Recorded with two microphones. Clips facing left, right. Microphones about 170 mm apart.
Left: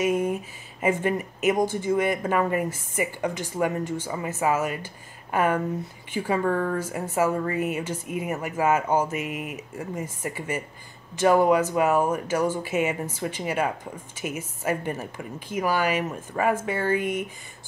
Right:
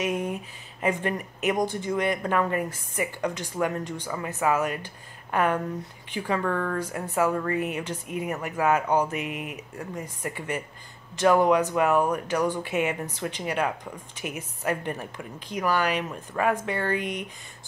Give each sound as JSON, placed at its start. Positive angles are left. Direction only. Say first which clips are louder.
{"t": 0.0, "sound": "speech", "louder": "left 4 dB", "side_deg": 5}